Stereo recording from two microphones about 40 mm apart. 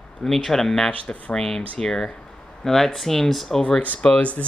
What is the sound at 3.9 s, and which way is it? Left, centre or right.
Speech, left.